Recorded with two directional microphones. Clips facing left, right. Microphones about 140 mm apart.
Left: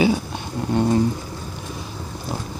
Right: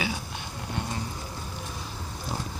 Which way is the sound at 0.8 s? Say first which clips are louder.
Left 15 dB; 35° left (ahead or behind).